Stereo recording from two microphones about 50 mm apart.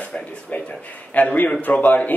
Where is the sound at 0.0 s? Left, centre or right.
Centre.